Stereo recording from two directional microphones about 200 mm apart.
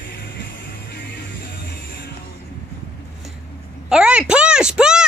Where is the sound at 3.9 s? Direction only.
5° right (ahead or behind).